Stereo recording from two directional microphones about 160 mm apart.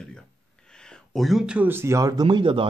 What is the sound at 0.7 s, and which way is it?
Speech, 5° left (ahead or behind).